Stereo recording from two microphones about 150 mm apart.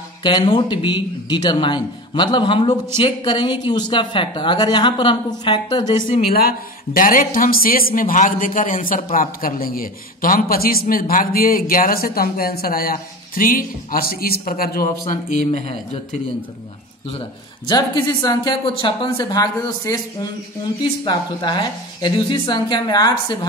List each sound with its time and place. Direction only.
0.2 s a man's voice: 30° left (ahead or behind)
6.3 s speech: 85° left; by 16.2 s 45° left (ahead or behind)
17.6 s a man's voice: 30° left (ahead or behind)